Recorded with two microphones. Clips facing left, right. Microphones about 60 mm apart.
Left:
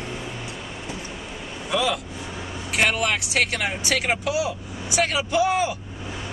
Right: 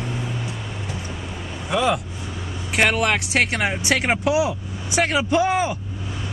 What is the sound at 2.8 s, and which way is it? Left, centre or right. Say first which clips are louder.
Speech: right 3 dB; right.